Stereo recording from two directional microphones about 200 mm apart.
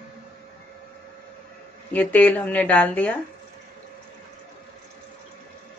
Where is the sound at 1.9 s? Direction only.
10° left (ahead or behind).